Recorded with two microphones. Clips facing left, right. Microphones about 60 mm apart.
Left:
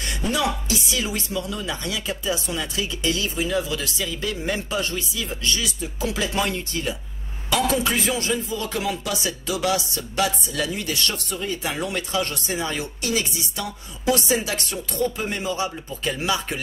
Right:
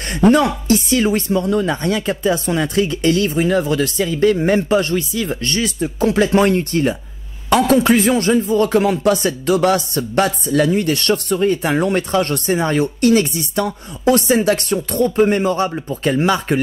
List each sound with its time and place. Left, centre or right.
0.1 s speech: right